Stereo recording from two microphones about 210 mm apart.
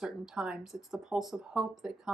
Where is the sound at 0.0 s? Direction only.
5° right (ahead or behind).